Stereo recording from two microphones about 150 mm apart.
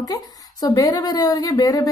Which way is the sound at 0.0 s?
25° left (ahead or behind).